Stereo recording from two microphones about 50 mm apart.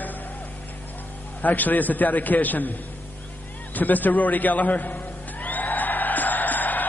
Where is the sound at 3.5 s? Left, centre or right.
Left.